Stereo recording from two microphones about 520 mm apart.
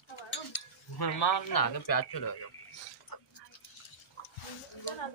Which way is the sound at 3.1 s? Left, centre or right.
Left.